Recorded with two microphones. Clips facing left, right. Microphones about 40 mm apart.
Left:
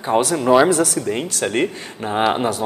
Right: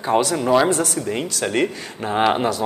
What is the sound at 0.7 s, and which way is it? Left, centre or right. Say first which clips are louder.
Speech: left 3 dB; left.